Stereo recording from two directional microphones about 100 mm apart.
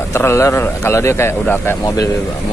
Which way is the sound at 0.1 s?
30° left (ahead or behind).